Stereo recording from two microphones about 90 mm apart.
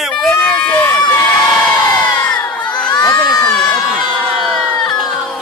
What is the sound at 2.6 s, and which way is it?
Crowd, 55° left (ahead or behind).